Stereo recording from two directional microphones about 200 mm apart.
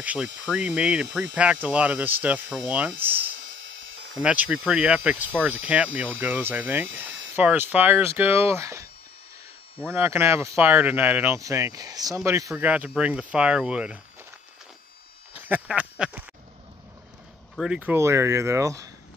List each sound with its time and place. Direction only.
0.0 s speech: 5° right (ahead or behind)
3.5 s dental drill: 70° right (ahead or behind)
4.2 s speech: 5° right (ahead or behind)
9.8 s speech: 10° right (ahead or behind)
15.4 s speech: 10° right (ahead or behind)
17.6 s speech: 5° right (ahead or behind)